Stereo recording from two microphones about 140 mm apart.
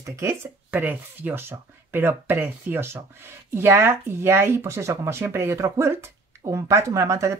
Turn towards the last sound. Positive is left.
turn(degrees=-20)  # may be behind; listen again after turning